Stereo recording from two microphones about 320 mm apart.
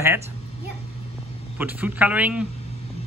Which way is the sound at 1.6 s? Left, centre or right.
Centre.